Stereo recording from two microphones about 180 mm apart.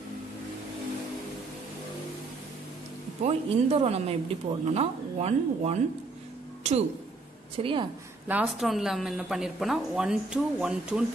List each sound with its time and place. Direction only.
3.3 s speech: 35° right (ahead or behind)
7.5 s a woman's voice: 30° right (ahead or behind)
8.3 s speech: 5° right (ahead or behind)